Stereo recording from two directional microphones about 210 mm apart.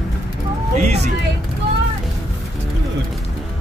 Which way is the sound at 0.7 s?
30° right (ahead or behind).